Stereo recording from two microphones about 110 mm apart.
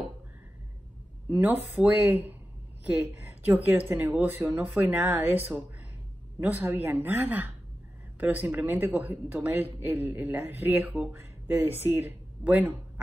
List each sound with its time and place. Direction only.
1.3 s speech: 15° right (ahead or behind)
3.4 s speech: 15° right (ahead or behind)